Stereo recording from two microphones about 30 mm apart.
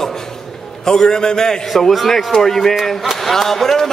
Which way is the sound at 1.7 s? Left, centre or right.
Centre.